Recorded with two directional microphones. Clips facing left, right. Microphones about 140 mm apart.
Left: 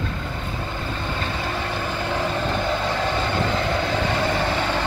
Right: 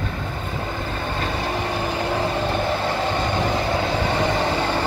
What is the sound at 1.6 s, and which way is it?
Vehicle, 15° right (ahead or behind).